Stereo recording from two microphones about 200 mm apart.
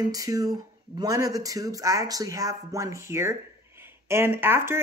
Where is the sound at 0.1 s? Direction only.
15° right (ahead or behind).